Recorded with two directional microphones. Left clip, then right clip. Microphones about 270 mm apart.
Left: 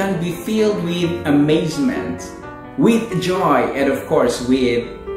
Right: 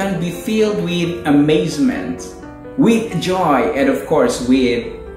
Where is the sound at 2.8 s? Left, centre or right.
Centre.